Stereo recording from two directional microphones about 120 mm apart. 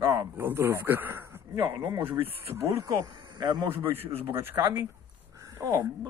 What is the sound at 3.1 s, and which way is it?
Speech, 35° right (ahead or behind).